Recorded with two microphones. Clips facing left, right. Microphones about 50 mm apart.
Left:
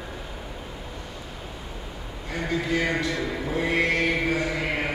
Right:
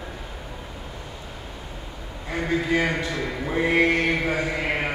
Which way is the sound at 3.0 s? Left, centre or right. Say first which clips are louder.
Even; right.